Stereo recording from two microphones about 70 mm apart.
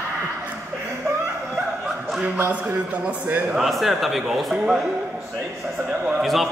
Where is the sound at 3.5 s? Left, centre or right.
Centre.